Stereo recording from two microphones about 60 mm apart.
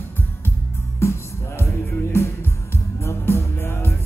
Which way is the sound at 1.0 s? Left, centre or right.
Left.